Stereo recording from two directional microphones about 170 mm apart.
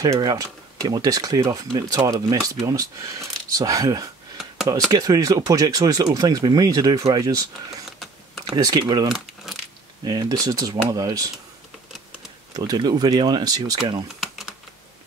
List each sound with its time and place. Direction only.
0.0 s speech: 20° right (ahead or behind)
9.1 s keys jangling: centre (ahead or behind)
10.0 s speech: 20° right (ahead or behind)
12.5 s speech: 25° right (ahead or behind)